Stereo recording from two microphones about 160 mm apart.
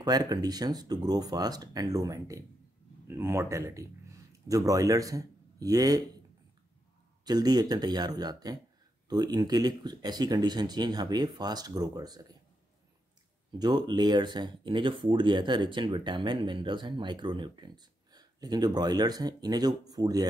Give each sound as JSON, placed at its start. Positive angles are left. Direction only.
{"t": 0.0, "sound": "speech", "side_deg": -25}
{"t": 7.2, "sound": "speech", "side_deg": -25}
{"t": 13.5, "sound": "speech", "side_deg": -25}